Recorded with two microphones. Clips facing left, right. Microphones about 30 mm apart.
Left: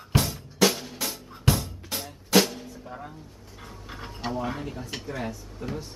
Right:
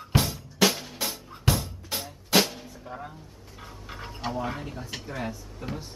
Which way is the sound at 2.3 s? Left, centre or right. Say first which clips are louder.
Left 2 dB; centre.